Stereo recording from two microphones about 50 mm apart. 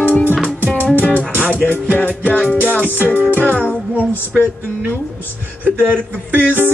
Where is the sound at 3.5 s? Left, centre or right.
Left.